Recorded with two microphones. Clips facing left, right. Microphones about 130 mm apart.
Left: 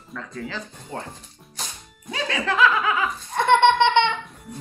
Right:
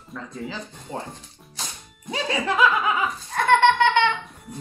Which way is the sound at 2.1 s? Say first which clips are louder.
Right 1 dB; 15° right (ahead or behind).